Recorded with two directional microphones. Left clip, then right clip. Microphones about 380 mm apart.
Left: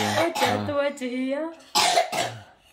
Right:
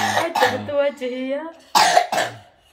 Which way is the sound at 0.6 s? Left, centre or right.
Centre.